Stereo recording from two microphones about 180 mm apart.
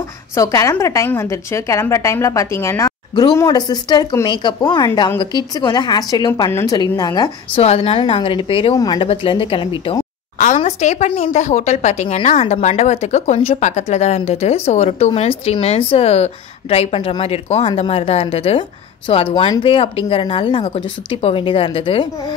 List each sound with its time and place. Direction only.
0.4 s a woman's voice: 15° left (ahead or behind)
7.6 s speech: 35° left (ahead or behind)
10.4 s speech: 40° left (ahead or behind)